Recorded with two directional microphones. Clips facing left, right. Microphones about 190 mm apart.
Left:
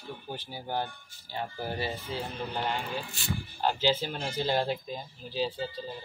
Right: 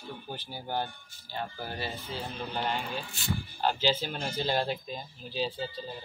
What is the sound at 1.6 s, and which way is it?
Speech, 20° left (ahead or behind).